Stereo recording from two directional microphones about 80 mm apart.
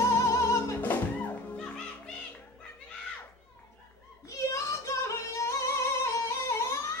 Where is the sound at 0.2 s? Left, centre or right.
Left.